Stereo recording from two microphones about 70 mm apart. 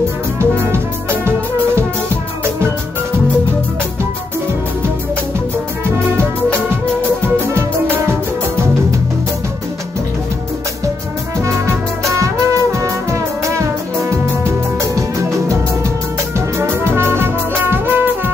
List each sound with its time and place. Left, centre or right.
0.4 s music: right
12.7 s music: right
16.3 s brass instrument: right